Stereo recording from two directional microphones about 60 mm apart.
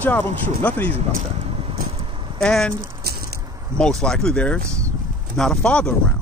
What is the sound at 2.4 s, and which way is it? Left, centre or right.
Speech, centre.